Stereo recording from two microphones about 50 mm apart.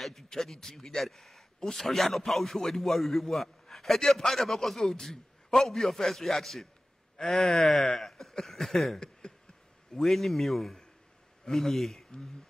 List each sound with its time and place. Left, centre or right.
0.0 s a man's voice: centre
9.2 s a sound: centre
9.9 s a man's voice: centre